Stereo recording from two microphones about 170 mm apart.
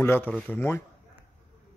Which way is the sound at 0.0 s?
15° left (ahead or behind).